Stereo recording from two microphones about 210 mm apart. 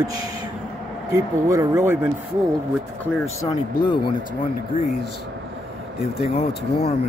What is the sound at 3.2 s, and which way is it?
Speech, 15° left (ahead or behind).